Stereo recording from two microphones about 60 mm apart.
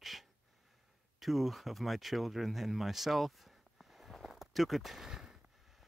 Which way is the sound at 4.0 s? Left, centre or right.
Centre.